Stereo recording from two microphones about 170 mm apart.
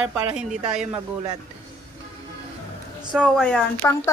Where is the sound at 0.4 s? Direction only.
5° right (ahead or behind).